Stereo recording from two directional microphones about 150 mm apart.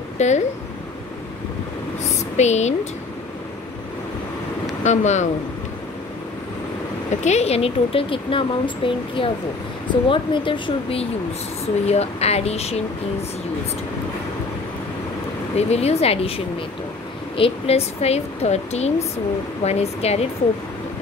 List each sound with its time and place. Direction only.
0.2 s speech: 50° left (ahead or behind)
2.3 s speech: 50° left (ahead or behind)
4.8 s speech: 50° left (ahead or behind)
7.2 s speech: 45° left (ahead or behind)
15.5 s speech: 45° left (ahead or behind)
17.4 s speech: 45° left (ahead or behind)